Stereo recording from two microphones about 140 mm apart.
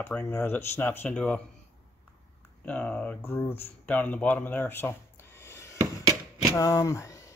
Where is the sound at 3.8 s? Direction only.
10° left (ahead or behind).